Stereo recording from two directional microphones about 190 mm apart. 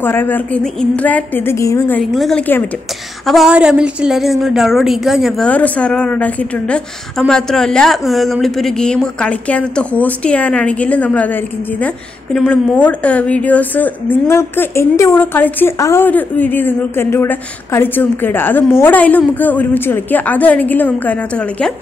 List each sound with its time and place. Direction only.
0.0 s a woman's voice: 10° left (ahead or behind)
2.0 s a woman's voice: 5° left (ahead or behind)